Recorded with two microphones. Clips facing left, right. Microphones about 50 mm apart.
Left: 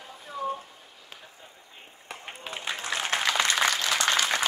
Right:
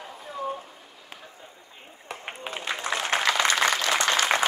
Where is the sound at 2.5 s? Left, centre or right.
Centre; by 4.4 s right.